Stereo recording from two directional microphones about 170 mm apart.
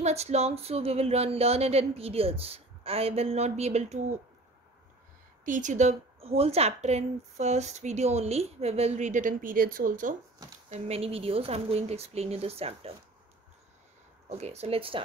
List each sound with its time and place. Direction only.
0.0 s a woman's voice: 40° right (ahead or behind)
5.4 s a woman's voice: 50° right (ahead or behind)
10.7 s a woman's voice: 35° right (ahead or behind)
14.3 s a woman's voice: 40° right (ahead or behind)